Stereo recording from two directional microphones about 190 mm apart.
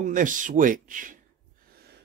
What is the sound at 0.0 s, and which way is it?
Speech, 45° right (ahead or behind).